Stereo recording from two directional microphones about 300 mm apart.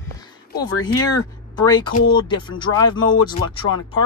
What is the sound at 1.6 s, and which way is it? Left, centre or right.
Speech, centre.